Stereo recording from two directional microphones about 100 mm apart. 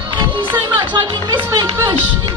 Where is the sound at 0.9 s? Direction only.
45° right (ahead or behind).